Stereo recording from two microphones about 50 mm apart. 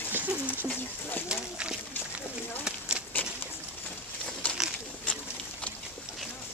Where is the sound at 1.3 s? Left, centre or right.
Centre.